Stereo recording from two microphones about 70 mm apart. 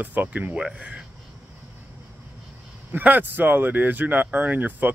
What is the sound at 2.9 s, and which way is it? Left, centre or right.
Speech, right.